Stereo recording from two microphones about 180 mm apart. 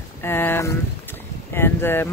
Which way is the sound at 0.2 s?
10° left (ahead or behind).